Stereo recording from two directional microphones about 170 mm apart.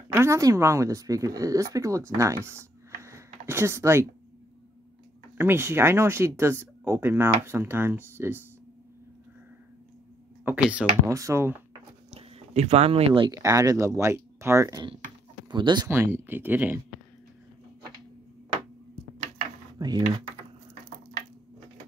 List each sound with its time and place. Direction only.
0.1 s speech: 15° right (ahead or behind)
5.4 s speech: 15° right (ahead or behind)
10.4 s speech: 10° right (ahead or behind)
12.1 s speech: 35° right (ahead or behind)
13.3 s speech: 20° right (ahead or behind)
15.9 s speech: 10° right (ahead or behind)
19.8 s speech: 25° right (ahead or behind)